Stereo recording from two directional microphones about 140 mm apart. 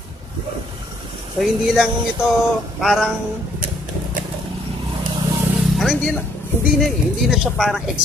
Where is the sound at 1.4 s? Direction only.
5° right (ahead or behind).